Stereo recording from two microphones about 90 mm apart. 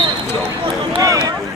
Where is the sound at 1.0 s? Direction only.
40° right (ahead or behind).